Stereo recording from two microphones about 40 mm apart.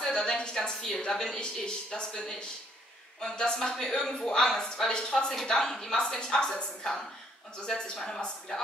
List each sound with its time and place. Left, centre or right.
0.0 s a woman's voice: centre